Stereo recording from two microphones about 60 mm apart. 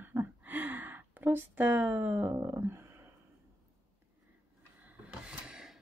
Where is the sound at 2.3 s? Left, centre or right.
Right.